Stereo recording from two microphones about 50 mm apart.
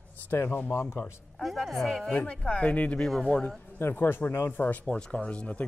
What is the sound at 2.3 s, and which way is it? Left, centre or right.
Speech, left.